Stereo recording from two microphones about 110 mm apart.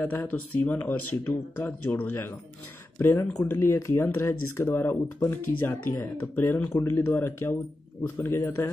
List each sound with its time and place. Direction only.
0.0 s speech: 20° left (ahead or behind)